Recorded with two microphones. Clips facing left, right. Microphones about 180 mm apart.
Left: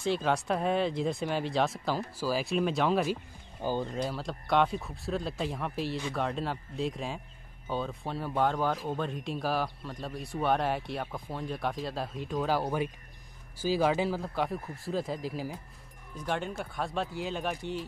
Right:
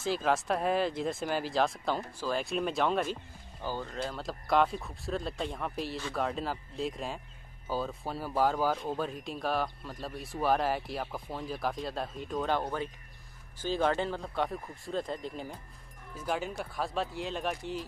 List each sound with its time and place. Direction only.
0.0 s speech: centre (ahead or behind)
3.6 s speech: 20° left (ahead or behind)
4.2 s speech: centre (ahead or behind)